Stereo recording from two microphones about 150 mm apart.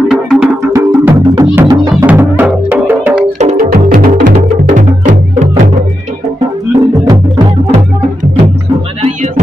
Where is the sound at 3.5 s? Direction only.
70° right (ahead or behind).